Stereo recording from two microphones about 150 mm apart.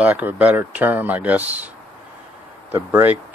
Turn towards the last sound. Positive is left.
turn(degrees=-10)  # may be behind; listen again after turning